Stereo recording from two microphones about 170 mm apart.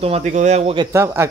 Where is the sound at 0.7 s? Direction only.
15° right (ahead or behind).